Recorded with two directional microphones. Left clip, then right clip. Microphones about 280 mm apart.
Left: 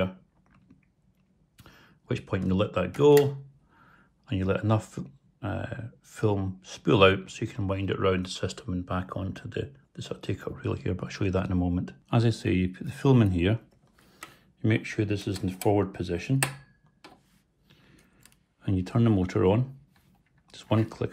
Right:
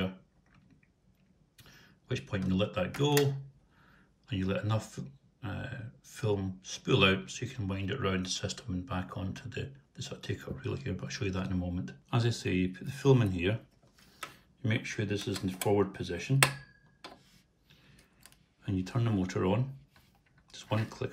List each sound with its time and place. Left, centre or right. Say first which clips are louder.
1.6 s a sound: left 3 dB; centre
3.7 s speech: left 5 dB; centre
14.6 s speech: left 7 dB; left
18.6 s speech: left 8 dB; left